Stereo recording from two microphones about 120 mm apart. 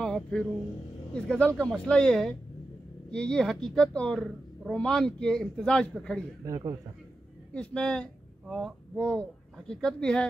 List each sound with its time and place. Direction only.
0.0 s a sound: 5° left (ahead or behind)
1.1 s a woman's voice: 10° left (ahead or behind)
6.4 s a man's voice: 30° right (ahead or behind)
7.5 s speech: 10° left (ahead or behind)
8.5 s a woman's voice: 5° right (ahead or behind)
8.9 s speech: 10° left (ahead or behind)